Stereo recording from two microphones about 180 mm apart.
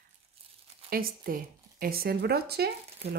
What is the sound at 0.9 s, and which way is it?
Speech, 55° right (ahead or behind).